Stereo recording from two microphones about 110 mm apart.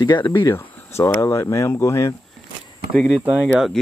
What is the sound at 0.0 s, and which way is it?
Speech, 40° left (ahead or behind).